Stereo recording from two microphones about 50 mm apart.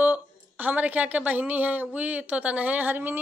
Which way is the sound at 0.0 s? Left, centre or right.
Right.